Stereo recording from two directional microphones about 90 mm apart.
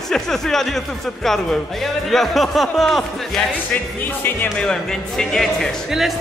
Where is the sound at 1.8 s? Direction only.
Centre (ahead or behind).